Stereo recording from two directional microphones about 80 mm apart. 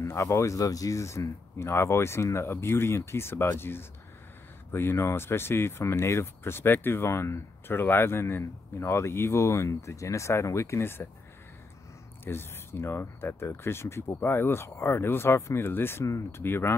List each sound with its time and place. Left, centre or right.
0.0 s speech: left
12.3 s speech: left